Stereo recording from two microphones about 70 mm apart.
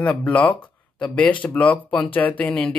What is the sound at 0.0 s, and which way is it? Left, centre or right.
Speech, centre.